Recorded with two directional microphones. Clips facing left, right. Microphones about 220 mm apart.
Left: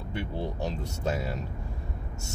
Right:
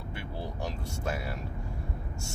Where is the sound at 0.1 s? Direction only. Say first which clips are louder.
Left 7 dB; 20° left (ahead or behind).